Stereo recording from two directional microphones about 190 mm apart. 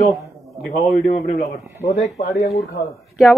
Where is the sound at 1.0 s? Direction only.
35° left (ahead or behind).